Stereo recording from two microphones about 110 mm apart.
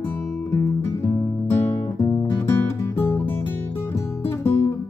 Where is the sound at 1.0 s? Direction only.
20° left (ahead or behind).